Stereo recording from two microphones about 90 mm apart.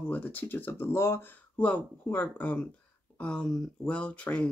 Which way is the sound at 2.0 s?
20° left (ahead or behind).